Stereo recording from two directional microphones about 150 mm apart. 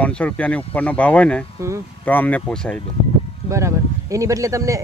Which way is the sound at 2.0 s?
10° left (ahead or behind).